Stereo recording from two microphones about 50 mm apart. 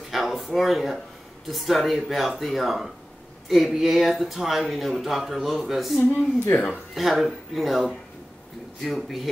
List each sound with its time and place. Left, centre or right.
0.1 s a sound: centre
0.5 s speech: centre
5.9 s speech: left
7.0 s speech: centre